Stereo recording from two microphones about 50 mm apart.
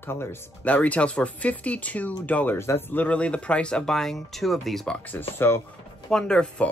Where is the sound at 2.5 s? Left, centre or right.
Left.